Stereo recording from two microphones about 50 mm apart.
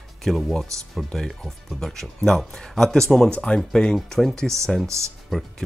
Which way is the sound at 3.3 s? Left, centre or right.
Left.